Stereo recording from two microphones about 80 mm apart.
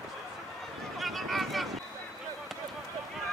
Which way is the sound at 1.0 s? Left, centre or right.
Centre.